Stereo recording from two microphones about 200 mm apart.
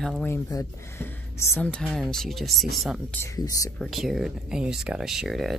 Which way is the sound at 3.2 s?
15° left (ahead or behind).